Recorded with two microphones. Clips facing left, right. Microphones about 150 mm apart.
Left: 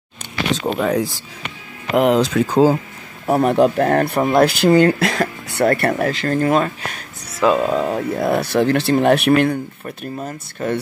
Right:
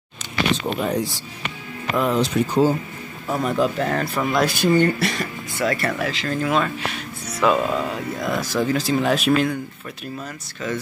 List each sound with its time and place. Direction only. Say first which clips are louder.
0.6 s speech: left 4 dB; 85° left
3.3 s speech: left 7 dB; 60° left (ahead or behind); by 7.1 s 40° left (ahead or behind)
7.4 s speech: left 3 dB; 25° left (ahead or behind)
7.9 s speech: left 7 dB; 60° left (ahead or behind)
9.5 s speech: left 5 dB; 40° left (ahead or behind)